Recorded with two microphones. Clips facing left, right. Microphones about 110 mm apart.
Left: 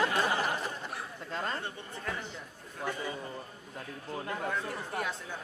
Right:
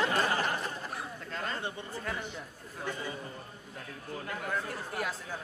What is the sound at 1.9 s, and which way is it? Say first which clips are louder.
Speech: right 1 dB; centre (ahead or behind).